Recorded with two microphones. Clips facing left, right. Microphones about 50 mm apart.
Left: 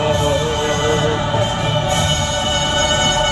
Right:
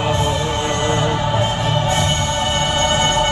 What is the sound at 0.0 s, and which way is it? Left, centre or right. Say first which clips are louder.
Music: left 2 dB; right.